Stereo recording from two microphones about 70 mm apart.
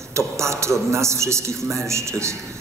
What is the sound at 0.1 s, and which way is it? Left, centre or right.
A man's voice, right.